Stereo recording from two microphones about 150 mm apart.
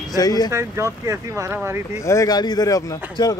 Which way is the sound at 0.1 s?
25° left (ahead or behind).